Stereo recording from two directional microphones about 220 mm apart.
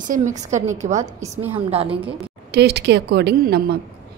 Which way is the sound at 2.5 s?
50° right (ahead or behind).